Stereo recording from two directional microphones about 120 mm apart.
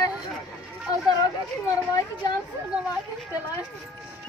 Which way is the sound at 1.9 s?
35° left (ahead or behind).